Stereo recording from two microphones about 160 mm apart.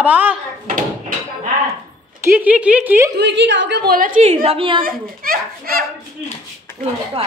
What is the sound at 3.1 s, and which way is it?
A woman's voice, 90° right.